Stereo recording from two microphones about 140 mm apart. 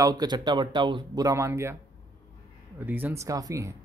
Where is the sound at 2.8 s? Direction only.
15° right (ahead or behind).